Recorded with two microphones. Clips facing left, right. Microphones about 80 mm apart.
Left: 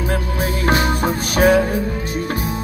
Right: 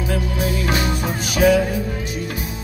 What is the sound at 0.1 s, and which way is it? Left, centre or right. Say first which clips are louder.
Music: left 1 dB; left.